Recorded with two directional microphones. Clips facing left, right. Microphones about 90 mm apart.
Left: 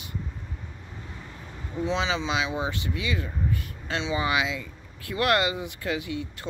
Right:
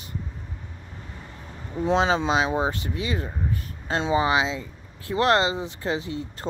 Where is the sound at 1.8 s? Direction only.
45° right (ahead or behind).